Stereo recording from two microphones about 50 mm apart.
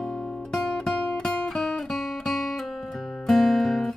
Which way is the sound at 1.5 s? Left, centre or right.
Centre.